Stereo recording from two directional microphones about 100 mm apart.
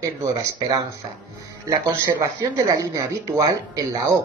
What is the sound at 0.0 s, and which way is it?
Speech, 30° right (ahead or behind).